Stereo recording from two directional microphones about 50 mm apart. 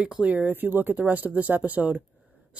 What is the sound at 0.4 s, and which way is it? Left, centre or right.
Speech, right.